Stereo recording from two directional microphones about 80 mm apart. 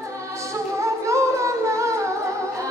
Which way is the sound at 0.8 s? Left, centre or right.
Right.